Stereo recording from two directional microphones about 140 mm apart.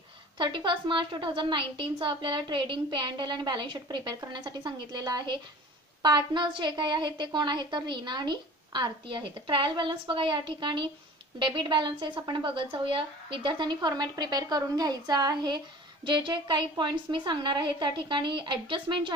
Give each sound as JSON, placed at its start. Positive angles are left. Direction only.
{"t": 0.4, "sound": "a woman's voice", "side_deg": -35}